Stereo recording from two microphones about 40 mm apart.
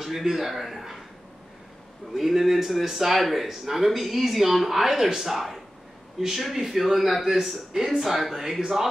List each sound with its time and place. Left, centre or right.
0.0 s speech: centre
2.1 s speech: centre